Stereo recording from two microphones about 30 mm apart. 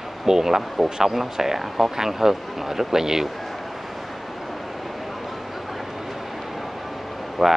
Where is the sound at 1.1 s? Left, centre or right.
Centre.